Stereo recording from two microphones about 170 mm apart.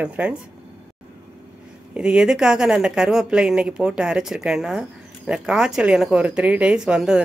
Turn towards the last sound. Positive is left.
turn(degrees=-5)  # may be behind; listen again after turning